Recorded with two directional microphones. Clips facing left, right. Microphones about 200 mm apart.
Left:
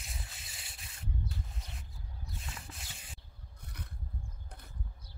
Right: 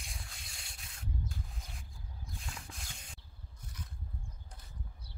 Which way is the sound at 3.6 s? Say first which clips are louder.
Left 1 dB; 60° left (ahead or behind).